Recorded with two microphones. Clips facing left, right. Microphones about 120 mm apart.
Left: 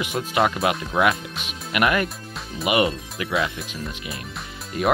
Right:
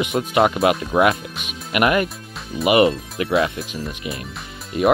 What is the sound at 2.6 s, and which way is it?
Speech, 30° right (ahead or behind).